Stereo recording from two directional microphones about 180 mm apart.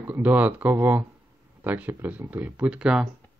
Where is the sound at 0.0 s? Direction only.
10° right (ahead or behind).